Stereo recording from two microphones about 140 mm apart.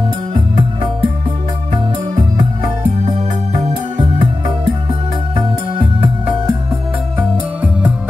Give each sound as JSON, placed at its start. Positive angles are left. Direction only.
{"t": 0.3, "sound": "music", "side_deg": -35}
{"t": 3.5, "sound": "music", "side_deg": -50}
{"t": 5.3, "sound": "music", "side_deg": -40}